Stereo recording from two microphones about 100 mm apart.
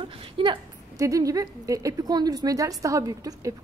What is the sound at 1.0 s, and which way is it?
A woman's voice, 35° right (ahead or behind).